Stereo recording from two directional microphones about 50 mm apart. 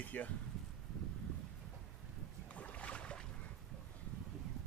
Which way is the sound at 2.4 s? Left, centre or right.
Left.